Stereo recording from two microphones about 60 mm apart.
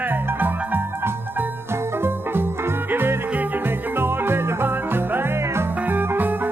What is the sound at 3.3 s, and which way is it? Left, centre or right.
Music, right.